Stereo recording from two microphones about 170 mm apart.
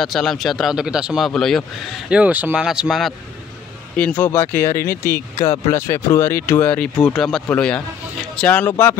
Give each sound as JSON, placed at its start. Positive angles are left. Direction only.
{"t": 0.0, "sound": "speech", "side_deg": 0}